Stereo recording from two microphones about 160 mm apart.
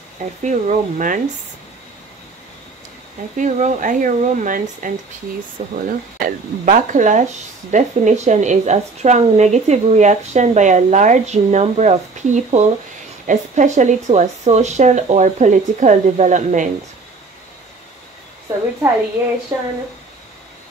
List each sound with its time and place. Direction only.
0.4 s a woman's voice: 50° right (ahead or behind)
3.3 s a woman's voice: 50° right (ahead or behind)
19.5 s speech: 15° right (ahead or behind)